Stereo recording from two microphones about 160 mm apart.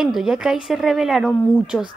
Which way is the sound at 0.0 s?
5° right (ahead or behind).